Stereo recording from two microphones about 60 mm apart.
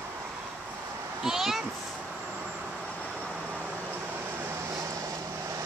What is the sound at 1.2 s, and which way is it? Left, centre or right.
Speech, centre.